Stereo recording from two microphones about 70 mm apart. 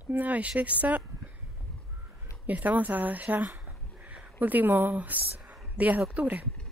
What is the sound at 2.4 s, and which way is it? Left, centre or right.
Speech, right.